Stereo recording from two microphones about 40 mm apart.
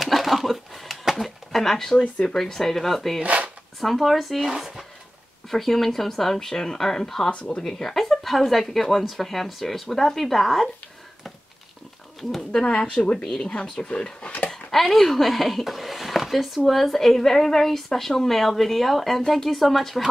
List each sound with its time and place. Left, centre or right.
0.0 s a sound: centre
2.3 s speech: centre
5.5 s speech: centre
7.2 s speech: left
7.6 s speech: centre
12.2 s speech: centre
12.5 s speech: left
14.7 s speech: centre